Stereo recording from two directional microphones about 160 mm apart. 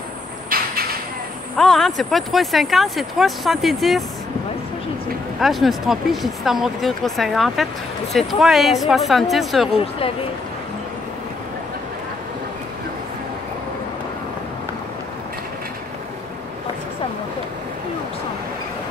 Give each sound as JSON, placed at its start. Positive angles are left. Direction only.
{"t": 0.5, "sound": "a sound", "side_deg": -70}
{"t": 1.6, "sound": "speech", "side_deg": 0}
{"t": 5.4, "sound": "speech", "side_deg": 0}
{"t": 9.8, "sound": "speech", "side_deg": 35}